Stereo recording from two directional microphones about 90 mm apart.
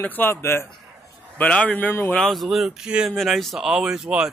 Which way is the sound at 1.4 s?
15° left (ahead or behind).